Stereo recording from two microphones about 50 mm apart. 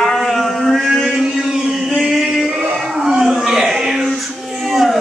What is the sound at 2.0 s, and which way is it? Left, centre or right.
Male singing, centre.